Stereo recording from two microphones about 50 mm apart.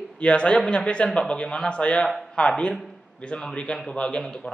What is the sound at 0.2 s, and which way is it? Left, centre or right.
A man's voice, left.